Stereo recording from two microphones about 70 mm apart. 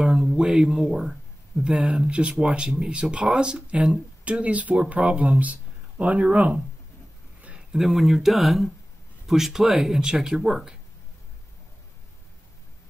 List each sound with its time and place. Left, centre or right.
0.0 s speech: centre
7.7 s speech: centre